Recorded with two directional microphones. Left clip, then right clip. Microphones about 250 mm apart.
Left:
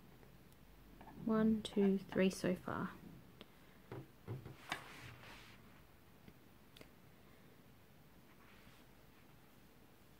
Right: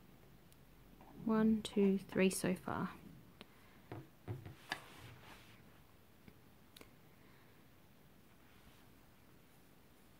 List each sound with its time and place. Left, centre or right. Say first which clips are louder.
1.2 s speech: right 1 dB; centre